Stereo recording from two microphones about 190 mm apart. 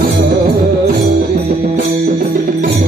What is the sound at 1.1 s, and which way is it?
Music, 50° right (ahead or behind).